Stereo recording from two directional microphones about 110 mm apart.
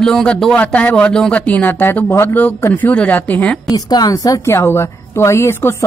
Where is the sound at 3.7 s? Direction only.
35° left (ahead or behind).